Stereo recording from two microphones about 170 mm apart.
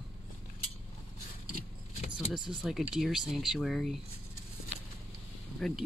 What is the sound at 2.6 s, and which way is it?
Speech, 5° right (ahead or behind).